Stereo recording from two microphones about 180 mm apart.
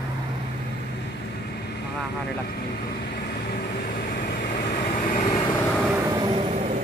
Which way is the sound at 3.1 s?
60° left (ahead or behind).